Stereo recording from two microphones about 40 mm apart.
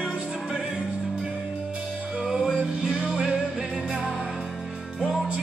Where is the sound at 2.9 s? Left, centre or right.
Right.